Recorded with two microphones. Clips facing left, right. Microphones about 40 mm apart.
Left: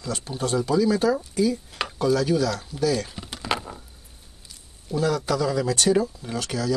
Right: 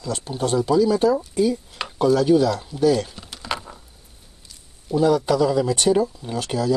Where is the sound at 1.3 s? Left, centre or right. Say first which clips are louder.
Right 3 dB; right.